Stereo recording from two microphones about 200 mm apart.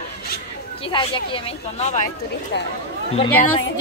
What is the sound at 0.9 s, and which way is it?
A woman's voice, 25° left (ahead or behind).